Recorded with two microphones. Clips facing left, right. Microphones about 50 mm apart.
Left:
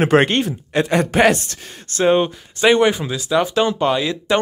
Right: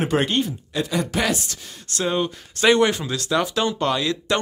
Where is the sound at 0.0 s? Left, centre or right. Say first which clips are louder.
Left 6 dB; left.